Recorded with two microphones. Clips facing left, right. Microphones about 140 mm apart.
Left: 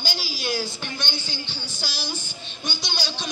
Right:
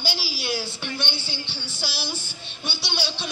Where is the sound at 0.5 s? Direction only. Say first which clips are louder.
Even; 30° right (ahead or behind).